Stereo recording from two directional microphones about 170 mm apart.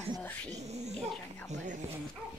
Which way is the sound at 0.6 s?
40° right (ahead or behind).